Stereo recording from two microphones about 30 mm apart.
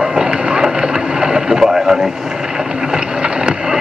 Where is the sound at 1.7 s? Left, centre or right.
Centre.